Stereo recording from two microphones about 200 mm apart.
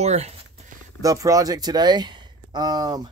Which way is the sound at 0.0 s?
35° right (ahead or behind).